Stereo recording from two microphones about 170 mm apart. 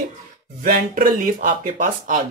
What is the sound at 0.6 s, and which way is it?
Speech, 55° right (ahead or behind).